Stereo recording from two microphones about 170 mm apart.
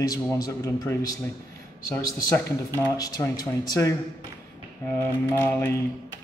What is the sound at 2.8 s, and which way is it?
A man's voice, 20° left (ahead or behind).